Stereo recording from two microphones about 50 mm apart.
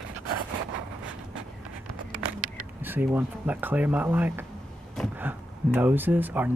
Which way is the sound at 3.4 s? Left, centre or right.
Right.